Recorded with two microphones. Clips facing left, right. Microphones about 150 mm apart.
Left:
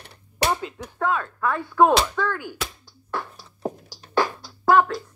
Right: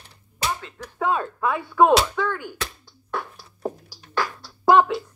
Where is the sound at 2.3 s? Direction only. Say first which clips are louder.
Even; 5° left (ahead or behind).